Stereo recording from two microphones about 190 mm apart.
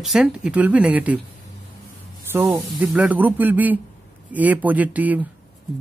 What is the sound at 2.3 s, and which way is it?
Speech, 10° right (ahead or behind).